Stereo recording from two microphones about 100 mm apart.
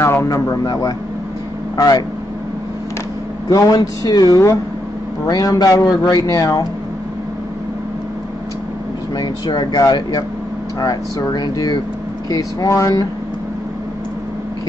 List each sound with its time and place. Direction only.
0.0 s speech: 30° left (ahead or behind)
3.4 s speech: 40° left (ahead or behind)
9.1 s speech: 45° left (ahead or behind)